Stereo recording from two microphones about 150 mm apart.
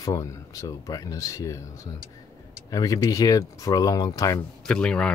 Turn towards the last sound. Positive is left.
turn(degrees=5)  # may be behind; listen again after turning